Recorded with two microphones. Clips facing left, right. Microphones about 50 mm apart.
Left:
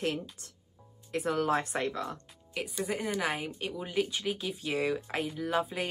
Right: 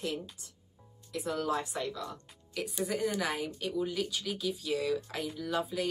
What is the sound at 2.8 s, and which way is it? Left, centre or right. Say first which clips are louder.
A woman's voice: even; left.